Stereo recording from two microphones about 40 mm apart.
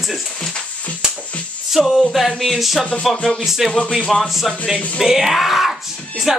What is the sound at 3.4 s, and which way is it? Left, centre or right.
Speech, centre.